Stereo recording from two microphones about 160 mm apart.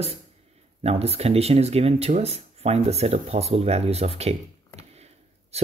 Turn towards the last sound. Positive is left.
turn(degrees=-40)  # may be behind; listen again after turning